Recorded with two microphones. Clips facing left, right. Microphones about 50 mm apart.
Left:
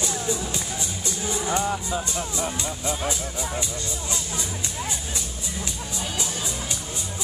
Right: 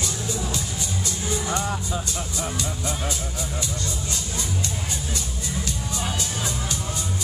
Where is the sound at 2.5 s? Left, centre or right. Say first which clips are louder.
Even; left.